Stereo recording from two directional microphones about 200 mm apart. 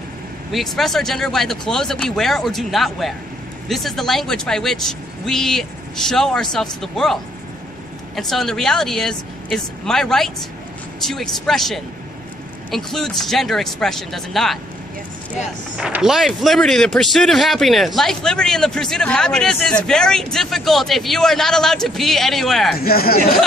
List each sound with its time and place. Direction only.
0.5 s a man's voice: centre (ahead or behind)
8.2 s a man's voice: centre (ahead or behind)
15.8 s a man's voice: 5° right (ahead or behind)
22.8 s speech: 50° left (ahead or behind)